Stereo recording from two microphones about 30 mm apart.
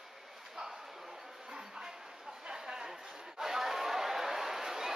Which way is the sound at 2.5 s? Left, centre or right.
Right.